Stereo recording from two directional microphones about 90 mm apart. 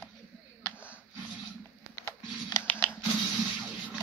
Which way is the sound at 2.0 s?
45° left (ahead or behind).